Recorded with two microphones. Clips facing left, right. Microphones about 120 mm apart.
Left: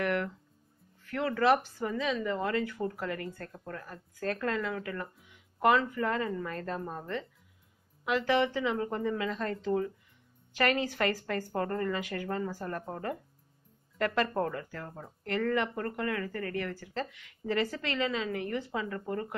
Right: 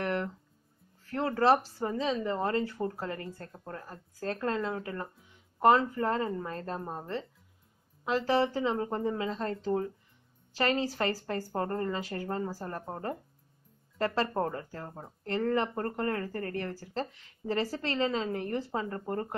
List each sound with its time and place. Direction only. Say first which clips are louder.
0.0 s music: left 1 dB; 30° right (ahead or behind)
1.0 s speech: right 1 dB; 35° right (ahead or behind)